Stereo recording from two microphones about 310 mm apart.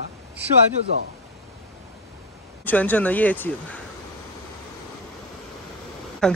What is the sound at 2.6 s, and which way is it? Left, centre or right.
Speech, centre.